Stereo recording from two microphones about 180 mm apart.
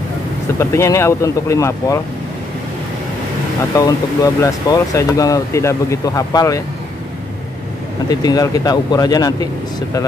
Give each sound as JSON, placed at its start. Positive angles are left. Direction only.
{"t": 0.6, "sound": "speech", "side_deg": 15}
{"t": 3.7, "sound": "speech", "side_deg": 20}
{"t": 8.1, "sound": "speech", "side_deg": 20}